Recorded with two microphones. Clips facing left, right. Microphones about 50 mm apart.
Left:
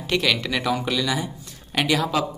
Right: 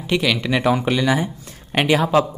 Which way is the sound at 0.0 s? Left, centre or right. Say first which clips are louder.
Right 2 dB; centre.